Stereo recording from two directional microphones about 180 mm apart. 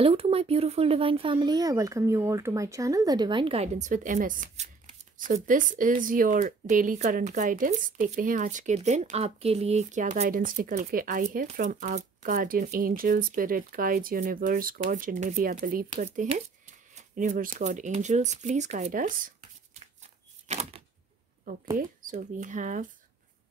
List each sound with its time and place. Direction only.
0.0 s speech: 30° right (ahead or behind)